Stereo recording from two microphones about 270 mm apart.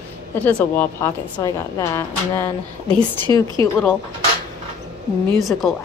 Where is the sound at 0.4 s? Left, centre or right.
Centre.